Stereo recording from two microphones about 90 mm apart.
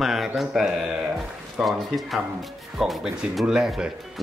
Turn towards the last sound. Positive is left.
turn(degrees=-5)  # may be behind; listen again after turning